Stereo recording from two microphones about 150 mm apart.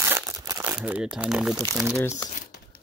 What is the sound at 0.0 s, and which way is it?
Crumpling, 15° right (ahead or behind).